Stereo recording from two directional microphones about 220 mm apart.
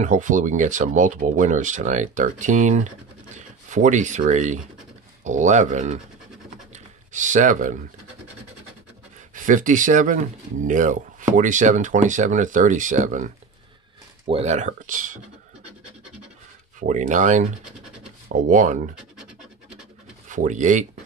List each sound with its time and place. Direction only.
0.0 s speech: 35° right (ahead or behind)
6.7 s a sound: 35° right (ahead or behind)
9.3 s speech: 35° right (ahead or behind)
16.8 s speech: 35° right (ahead or behind)
20.2 s speech: 35° right (ahead or behind)